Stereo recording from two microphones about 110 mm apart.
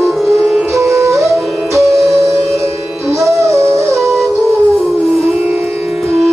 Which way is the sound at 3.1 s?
30° right (ahead or behind).